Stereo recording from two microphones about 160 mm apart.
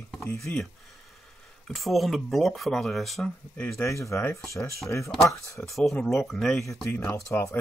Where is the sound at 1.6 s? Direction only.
Centre (ahead or behind).